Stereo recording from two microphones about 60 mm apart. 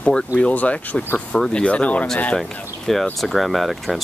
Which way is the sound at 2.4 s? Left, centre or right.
Centre.